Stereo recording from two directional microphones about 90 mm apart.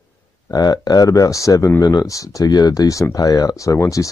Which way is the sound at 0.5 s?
45° left (ahead or behind).